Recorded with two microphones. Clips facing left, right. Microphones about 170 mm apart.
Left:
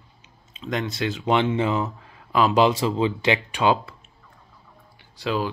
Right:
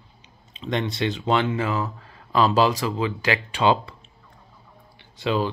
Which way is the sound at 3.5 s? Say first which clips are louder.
Right 1 dB; 10° left (ahead or behind).